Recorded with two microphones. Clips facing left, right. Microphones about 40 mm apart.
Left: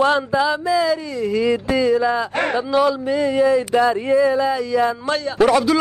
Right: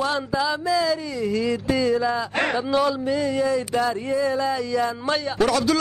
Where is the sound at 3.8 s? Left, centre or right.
Left.